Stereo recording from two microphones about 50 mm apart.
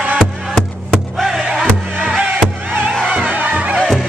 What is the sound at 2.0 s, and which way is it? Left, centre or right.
Music, right.